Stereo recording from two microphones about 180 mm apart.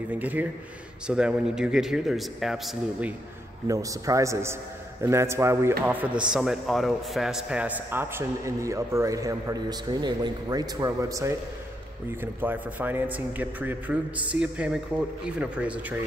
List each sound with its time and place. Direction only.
0.1 s a man's voice: 10° right (ahead or behind)
3.6 s a man's voice: 20° right (ahead or behind)